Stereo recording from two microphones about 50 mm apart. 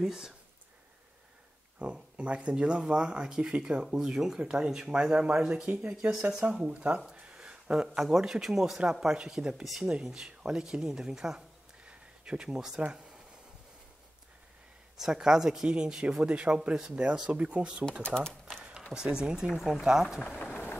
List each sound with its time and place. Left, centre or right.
0.0 s speech: centre
1.8 s speech: centre
5.9 s speech: centre
6.7 s speech: right; by 11.4 s centre
11.8 s a sound: right
15.0 s speech: centre
18.0 s speech: centre
18.9 s speech: centre
20.2 s speech: left